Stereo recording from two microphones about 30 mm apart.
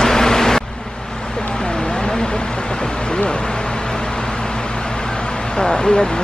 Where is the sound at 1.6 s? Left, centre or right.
Left.